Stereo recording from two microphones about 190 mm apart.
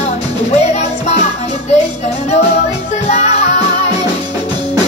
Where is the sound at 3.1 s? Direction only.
35° left (ahead or behind).